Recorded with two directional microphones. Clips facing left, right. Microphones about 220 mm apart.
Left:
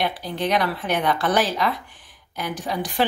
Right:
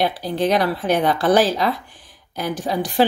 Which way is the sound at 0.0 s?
35° right (ahead or behind).